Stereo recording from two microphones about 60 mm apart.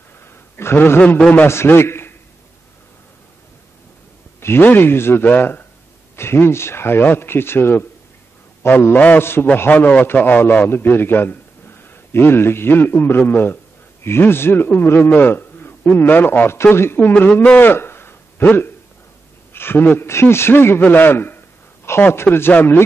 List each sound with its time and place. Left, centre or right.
0.6 s a man's voice: left
1.5 s a man's voice: left
4.4 s a sound: left
4.6 s a man's voice: left
9.2 s a man's voice: left
9.7 s a man's voice: left
17.3 s a man's voice: left
17.6 s a sound: left
19.5 s speech: left
20.1 s a man's voice: left
22.5 s a man's voice: left